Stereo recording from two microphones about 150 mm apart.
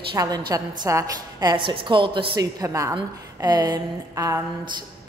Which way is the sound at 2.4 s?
20° right (ahead or behind).